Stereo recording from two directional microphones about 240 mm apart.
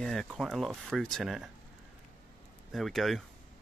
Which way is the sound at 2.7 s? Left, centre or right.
Centre.